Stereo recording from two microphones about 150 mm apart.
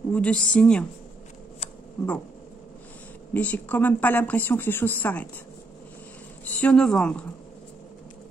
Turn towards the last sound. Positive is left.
turn(degrees=5)  # may be behind; listen again after turning